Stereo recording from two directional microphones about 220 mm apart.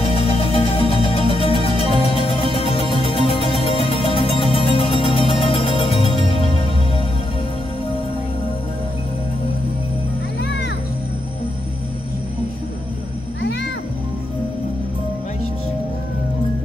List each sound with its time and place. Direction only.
0.6 s music: 25° left (ahead or behind)
13.4 s music: 50° left (ahead or behind)